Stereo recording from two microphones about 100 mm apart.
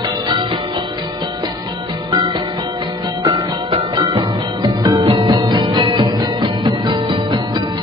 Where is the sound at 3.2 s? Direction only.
60° right (ahead or behind).